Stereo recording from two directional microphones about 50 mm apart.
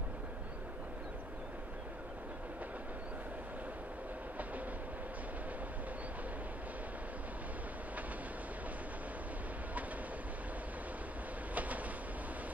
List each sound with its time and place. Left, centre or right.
11.5 s train: right